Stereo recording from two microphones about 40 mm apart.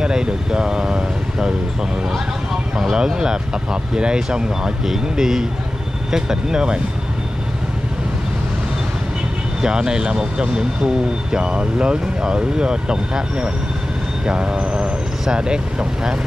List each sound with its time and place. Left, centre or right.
0.0 s speech: centre
2.8 s speech: centre
4.8 s speech: centre
9.6 s speech: centre